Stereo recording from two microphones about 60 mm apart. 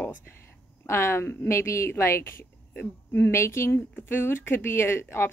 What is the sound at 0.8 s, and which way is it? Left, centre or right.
A woman's voice, left.